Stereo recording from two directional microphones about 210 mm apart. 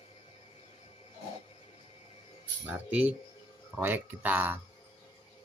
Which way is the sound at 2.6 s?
5° right (ahead or behind).